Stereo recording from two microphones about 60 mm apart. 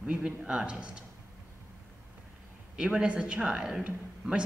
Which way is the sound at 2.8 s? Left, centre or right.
Centre.